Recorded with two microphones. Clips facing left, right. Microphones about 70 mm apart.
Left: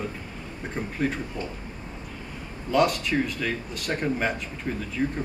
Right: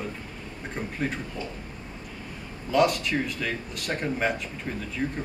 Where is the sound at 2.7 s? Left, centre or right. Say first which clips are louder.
Even; centre.